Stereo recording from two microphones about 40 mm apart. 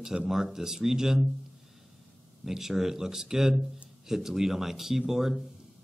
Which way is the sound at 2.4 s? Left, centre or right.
Centre.